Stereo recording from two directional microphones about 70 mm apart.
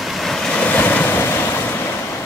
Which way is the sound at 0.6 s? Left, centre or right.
Left.